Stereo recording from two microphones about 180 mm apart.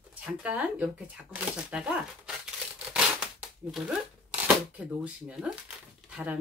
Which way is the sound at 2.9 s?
5° right (ahead or behind).